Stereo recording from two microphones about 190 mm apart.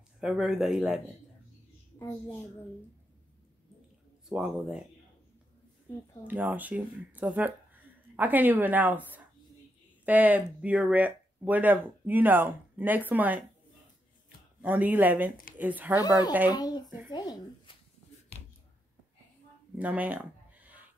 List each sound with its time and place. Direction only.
0.2 s speech: centre (ahead or behind)
2.0 s a child's voice: 15° left (ahead or behind)
4.3 s speech: 5° right (ahead or behind)
6.2 s speech: 10° right (ahead or behind)
14.6 s speech: 5° right (ahead or behind)
16.4 s speech: 20° left (ahead or behind)
19.8 s a sound: 10° right (ahead or behind)